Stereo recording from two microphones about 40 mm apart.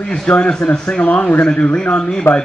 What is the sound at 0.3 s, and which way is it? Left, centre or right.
Speech, left.